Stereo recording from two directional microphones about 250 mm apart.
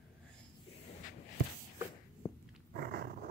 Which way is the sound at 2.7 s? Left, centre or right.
Right.